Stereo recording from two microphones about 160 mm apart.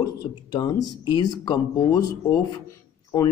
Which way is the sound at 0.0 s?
25° left (ahead or behind).